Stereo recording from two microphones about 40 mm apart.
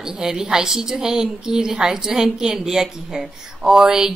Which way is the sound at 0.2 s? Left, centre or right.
Centre.